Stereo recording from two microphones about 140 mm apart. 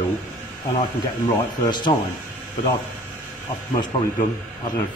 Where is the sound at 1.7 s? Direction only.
35° left (ahead or behind).